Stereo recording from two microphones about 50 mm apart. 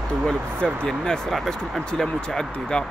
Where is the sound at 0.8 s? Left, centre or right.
Centre.